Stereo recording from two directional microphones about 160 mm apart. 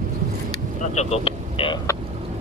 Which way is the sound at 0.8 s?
45° left (ahead or behind).